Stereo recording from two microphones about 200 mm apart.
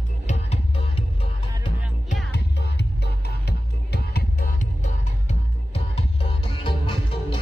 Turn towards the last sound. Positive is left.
turn(degrees=25)  # may be behind; listen again after turning